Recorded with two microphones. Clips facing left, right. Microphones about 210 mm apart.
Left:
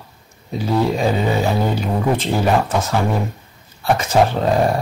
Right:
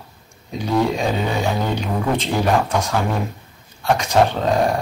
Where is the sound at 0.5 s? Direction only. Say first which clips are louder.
Left 1 dB; 5° left (ahead or behind).